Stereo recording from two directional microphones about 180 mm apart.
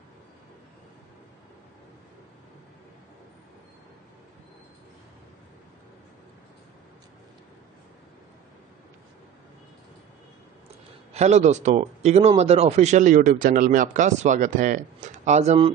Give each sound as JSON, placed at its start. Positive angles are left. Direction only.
{"t": 11.1, "sound": "speech", "side_deg": -40}